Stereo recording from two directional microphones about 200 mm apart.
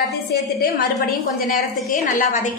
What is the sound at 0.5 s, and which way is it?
A woman's voice, 45° left (ahead or behind).